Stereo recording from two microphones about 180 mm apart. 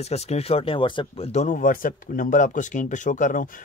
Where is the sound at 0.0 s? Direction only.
35° left (ahead or behind).